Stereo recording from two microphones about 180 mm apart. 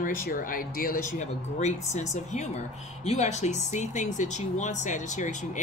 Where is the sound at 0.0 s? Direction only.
50° left (ahead or behind).